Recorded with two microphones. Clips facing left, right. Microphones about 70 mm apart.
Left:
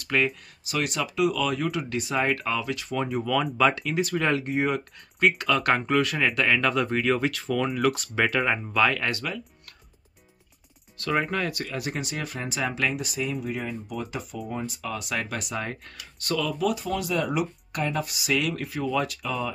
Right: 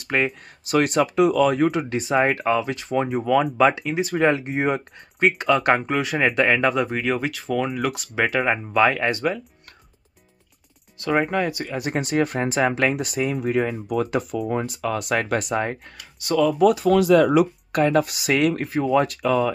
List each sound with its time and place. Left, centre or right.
0.0 s speech: right
0.7 s speech: right
5.8 s speech: centre
6.3 s speech: right
6.7 s speech: centre
8.8 s speech: right
11.1 s speech: centre
11.9 s speech: right
16.2 s speech: centre
16.6 s speech: right